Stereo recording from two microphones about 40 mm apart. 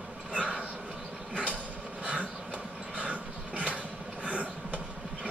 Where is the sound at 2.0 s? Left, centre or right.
Right.